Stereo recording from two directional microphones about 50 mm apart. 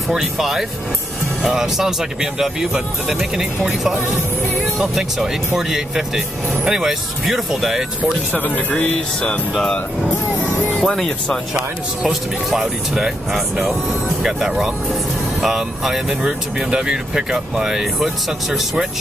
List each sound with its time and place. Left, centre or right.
0.1 s speech: centre
8.4 s speech: left
10.8 s speech: centre
12.1 s speech: centre